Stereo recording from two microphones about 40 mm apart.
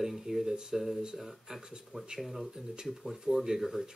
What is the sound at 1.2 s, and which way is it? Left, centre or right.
Speech, centre.